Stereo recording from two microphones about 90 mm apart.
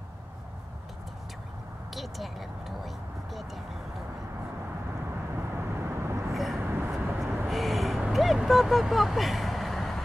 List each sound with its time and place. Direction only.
2.0 s a sound: centre (ahead or behind)
5.3 s vehicle: 25° right (ahead or behind)
6.3 s vehicle: centre (ahead or behind)
6.6 s vehicle: 20° right (ahead or behind)
7.4 s vehicle: centre (ahead or behind)
8.1 s speech: centre (ahead or behind)